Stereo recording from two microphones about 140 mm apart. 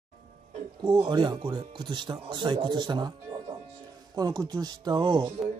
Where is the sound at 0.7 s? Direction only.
35° right (ahead or behind).